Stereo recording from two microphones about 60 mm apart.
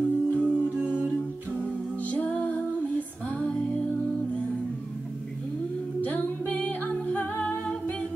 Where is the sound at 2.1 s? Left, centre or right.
Left.